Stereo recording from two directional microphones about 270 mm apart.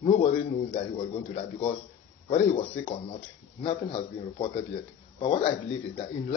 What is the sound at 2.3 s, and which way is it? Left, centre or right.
Speech, left.